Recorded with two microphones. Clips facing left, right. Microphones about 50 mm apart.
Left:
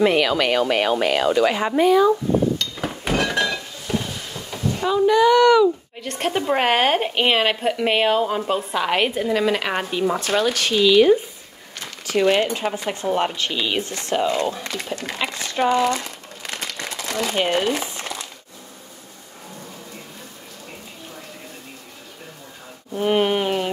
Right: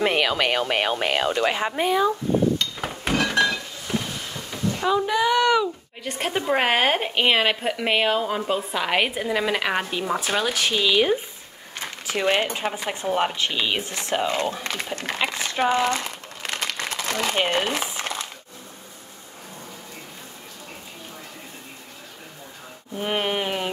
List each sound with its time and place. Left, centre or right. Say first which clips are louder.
0.0 s speech: left 4 dB; right
2.6 s thunk: left 1 dB; centre
4.5 s a sound: left 1 dB; centre
6.1 s a woman's voice: left 2 dB; centre
11.8 s a sound: left 5 dB; right
12.9 s speech: even; centre
14.2 s speech: left 3 dB; right
15.7 s crumpling: left 2 dB; right
17.0 s speech: left 2 dB; right
22.9 s a sound: left 6 dB; centre